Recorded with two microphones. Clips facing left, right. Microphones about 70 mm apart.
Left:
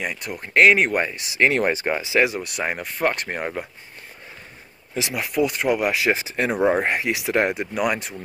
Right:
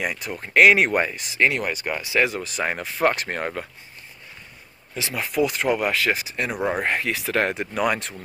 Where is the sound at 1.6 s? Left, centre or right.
Left.